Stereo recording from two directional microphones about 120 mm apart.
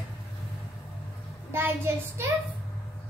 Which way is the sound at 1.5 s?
20° right (ahead or behind).